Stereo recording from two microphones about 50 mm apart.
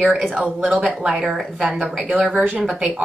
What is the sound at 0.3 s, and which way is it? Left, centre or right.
Speech, right.